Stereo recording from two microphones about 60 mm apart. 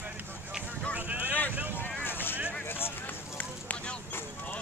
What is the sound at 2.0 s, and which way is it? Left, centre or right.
Vehicle, left.